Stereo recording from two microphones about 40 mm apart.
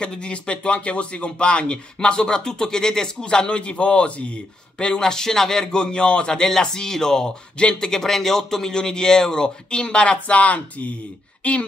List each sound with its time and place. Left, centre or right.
0.2 s speech: left
10.0 s speech: left